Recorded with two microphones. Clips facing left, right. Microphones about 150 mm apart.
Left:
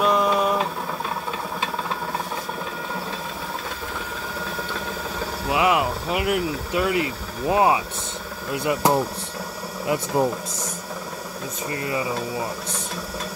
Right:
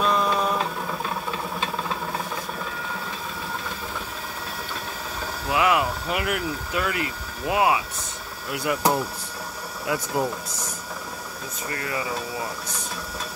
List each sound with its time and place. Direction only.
0.0 s a sound: 15° left (ahead or behind)
5.5 s speech: 20° left (ahead or behind)
9.8 s speech: 25° left (ahead or behind)
11.7 s speech: 20° left (ahead or behind)